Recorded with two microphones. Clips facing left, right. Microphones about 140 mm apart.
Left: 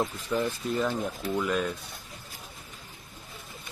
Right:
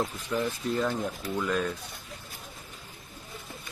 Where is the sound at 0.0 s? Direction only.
Centre (ahead or behind).